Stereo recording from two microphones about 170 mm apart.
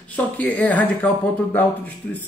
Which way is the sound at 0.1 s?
10° left (ahead or behind).